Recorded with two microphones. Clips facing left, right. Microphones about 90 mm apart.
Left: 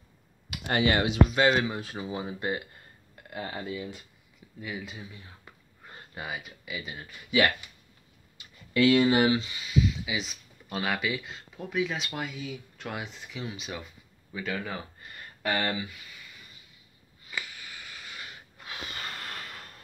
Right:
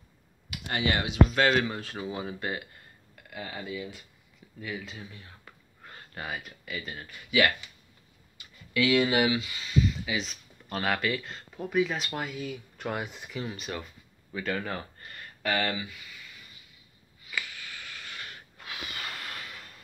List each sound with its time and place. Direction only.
1.3 s speech: 10° left (ahead or behind); by 4.0 s 30° left (ahead or behind)
4.6 s a sound: 10° left (ahead or behind)
6.2 s speech: 5° left (ahead or behind)
7.2 s speech: 30° left (ahead or behind)
8.7 s speech: 35° left (ahead or behind)
9.5 s speech: 15° left (ahead or behind)
9.8 s speech: centre (ahead or behind)
13.3 s speech: centre (ahead or behind)
15.1 s a sound: 15° left (ahead or behind)
17.3 s a sound: 20° left (ahead or behind)
18.7 s snort: 30° left (ahead or behind)